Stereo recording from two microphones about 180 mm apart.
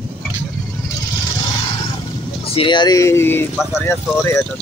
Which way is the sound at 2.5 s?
25° left (ahead or behind).